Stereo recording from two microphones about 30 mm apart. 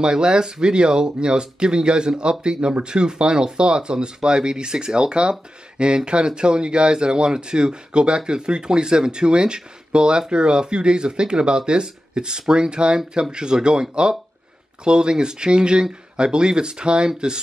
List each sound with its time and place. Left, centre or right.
0.0 s speech: right